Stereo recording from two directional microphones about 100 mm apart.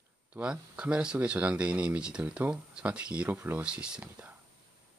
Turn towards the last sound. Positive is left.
turn(degrees=-15)  # may be behind; listen again after turning